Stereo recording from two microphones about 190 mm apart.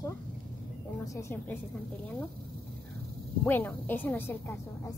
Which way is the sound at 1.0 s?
15° left (ahead or behind).